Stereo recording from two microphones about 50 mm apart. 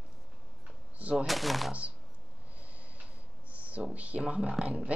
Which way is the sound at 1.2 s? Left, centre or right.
Centre.